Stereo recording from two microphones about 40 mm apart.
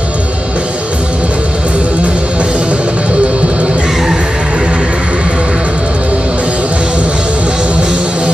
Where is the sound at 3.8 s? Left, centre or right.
Centre.